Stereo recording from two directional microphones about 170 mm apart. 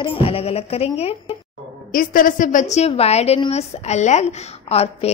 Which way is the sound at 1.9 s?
55° left (ahead or behind).